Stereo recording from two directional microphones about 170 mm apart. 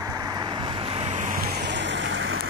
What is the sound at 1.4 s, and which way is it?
Vehicle, 75° right (ahead or behind).